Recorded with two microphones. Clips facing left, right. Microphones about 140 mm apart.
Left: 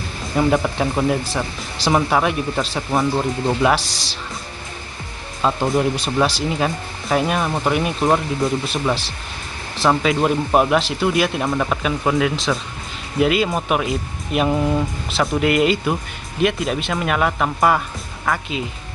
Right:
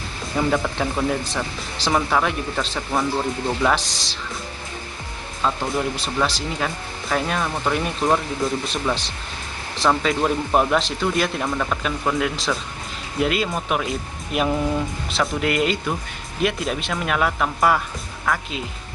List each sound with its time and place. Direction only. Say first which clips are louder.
0.4 s speech: left 4 dB; 15° left (ahead or behind)
5.4 s speech: left 5 dB; 20° left (ahead or behind); by 18.6 s 5° left (ahead or behind)